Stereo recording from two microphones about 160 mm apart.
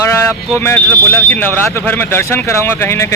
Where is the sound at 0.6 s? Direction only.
10° left (ahead or behind).